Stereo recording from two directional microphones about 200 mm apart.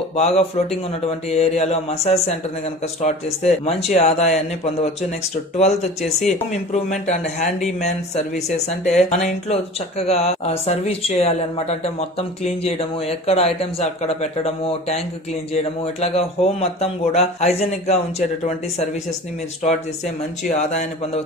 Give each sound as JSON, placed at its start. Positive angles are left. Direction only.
{"t": 0.1, "sound": "a man's voice", "side_deg": 30}
{"t": 20.4, "sound": "speech", "side_deg": 35}